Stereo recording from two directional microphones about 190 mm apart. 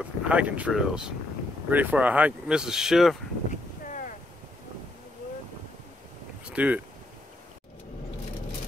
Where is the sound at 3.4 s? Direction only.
40° left (ahead or behind).